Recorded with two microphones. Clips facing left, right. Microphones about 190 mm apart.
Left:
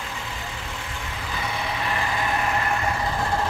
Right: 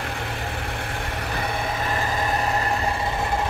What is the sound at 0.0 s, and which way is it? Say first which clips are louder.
Vehicle: right 4 dB; 60° right (ahead or behind).